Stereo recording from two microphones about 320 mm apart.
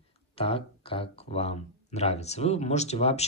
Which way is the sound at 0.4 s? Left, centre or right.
Centre.